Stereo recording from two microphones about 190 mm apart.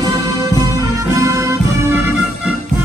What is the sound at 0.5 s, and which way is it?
Music, 20° right (ahead or behind).